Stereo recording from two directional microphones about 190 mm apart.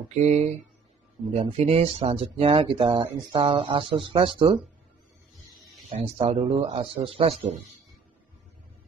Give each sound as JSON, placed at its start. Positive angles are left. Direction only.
{"t": 0.1, "sound": "speech", "side_deg": -35}
{"t": 5.6, "sound": "music", "side_deg": 0}
{"t": 5.9, "sound": "speech", "side_deg": -30}